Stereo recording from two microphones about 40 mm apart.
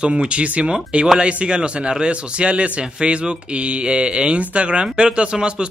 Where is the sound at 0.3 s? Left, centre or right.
Right.